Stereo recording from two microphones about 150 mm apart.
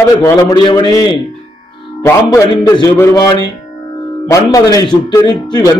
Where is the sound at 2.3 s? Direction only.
25° left (ahead or behind).